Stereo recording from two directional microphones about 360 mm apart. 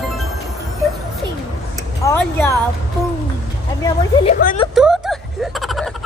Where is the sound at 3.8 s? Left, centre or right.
Centre.